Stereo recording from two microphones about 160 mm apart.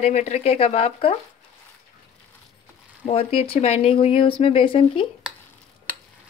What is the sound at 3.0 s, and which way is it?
Speech, 35° left (ahead or behind).